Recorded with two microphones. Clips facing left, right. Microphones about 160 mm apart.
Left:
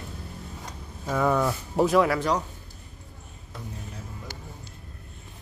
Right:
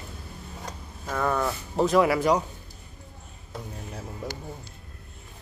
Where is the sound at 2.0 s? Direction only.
10° right (ahead or behind).